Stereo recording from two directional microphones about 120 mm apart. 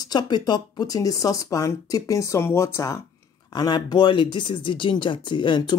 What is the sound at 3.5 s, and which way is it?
Speech, 35° left (ahead or behind).